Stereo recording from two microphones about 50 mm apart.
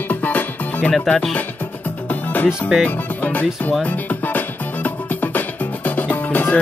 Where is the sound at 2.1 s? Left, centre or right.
Left.